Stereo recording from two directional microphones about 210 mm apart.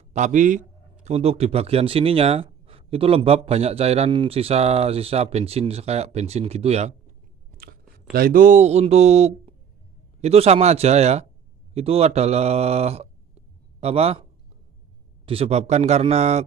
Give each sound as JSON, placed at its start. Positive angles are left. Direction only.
{"t": 0.1, "sound": "speech", "side_deg": -35}
{"t": 7.5, "sound": "speech", "side_deg": -45}
{"t": 15.2, "sound": "speech", "side_deg": -30}